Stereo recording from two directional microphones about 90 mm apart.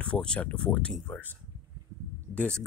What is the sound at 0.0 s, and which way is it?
Speech, 10° left (ahead or behind).